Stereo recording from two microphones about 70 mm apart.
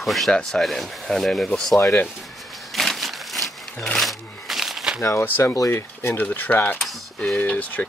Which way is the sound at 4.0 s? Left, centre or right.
Centre.